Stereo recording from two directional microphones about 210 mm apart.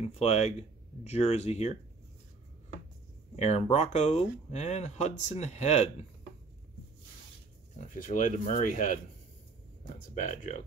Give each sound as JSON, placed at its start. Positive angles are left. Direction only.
{"t": 0.0, "sound": "speech", "side_deg": 30}
{"t": 3.3, "sound": "speech", "side_deg": 30}
{"t": 7.7, "sound": "speech", "side_deg": 40}
{"t": 10.2, "sound": "speech", "side_deg": 35}